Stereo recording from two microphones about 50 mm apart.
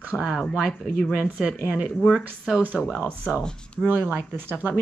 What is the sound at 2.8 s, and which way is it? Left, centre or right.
Speech, centre.